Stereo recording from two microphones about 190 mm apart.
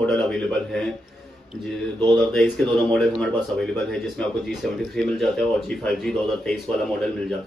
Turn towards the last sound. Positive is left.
turn(degrees=0)  # may be behind; listen again after turning